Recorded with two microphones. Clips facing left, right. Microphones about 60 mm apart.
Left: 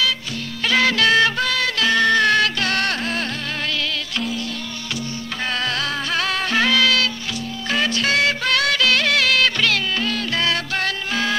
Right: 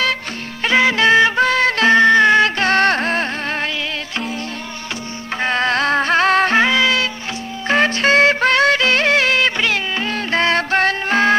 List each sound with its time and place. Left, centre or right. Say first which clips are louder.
0.7 s music: right 4 dB; right
5.4 s music: right 7 dB; right
6.6 s music: right 2 dB; right
7.6 s music: right 6 dB; right